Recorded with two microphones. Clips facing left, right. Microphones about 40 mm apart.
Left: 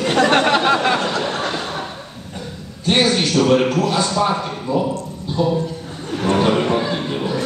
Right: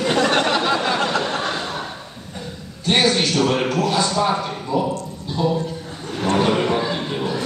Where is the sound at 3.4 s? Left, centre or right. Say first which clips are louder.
Left 4 dB; centre.